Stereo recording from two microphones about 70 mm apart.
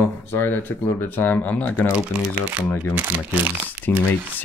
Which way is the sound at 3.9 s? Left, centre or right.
Left.